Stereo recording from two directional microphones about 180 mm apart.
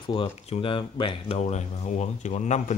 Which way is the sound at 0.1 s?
30° left (ahead or behind).